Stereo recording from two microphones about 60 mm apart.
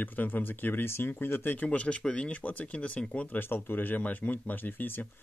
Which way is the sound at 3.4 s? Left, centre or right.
Left.